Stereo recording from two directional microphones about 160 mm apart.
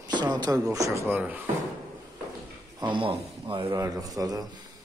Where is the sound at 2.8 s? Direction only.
30° right (ahead or behind).